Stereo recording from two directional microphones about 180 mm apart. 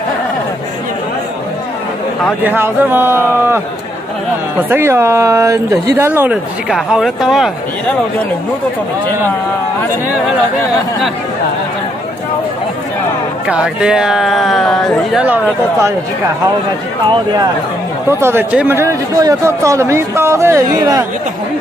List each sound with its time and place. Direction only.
2.4 s speech: 10° right (ahead or behind)
13.5 s speech: 5° right (ahead or behind)
15.2 s speech: 10° right (ahead or behind)
18.2 s speech: 10° right (ahead or behind)